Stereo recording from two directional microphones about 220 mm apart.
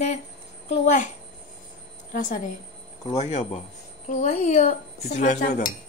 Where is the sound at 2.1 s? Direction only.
35° left (ahead or behind).